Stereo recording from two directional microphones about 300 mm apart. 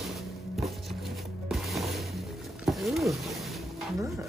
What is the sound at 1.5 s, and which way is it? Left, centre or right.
Music, centre.